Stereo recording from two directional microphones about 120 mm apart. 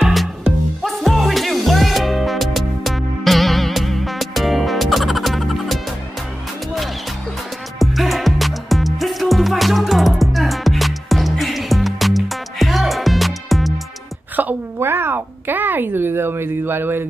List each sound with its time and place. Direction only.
0.0 s music: centre (ahead or behind)
7.8 s music: centre (ahead or behind)
14.3 s a sound: 15° right (ahead or behind)